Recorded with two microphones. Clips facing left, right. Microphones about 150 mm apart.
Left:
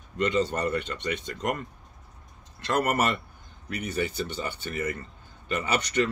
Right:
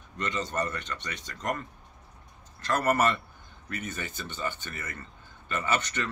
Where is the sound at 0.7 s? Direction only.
20° left (ahead or behind).